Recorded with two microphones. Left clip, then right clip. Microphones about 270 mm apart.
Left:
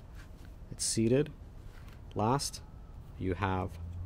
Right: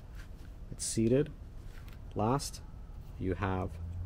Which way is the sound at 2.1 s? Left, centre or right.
Left.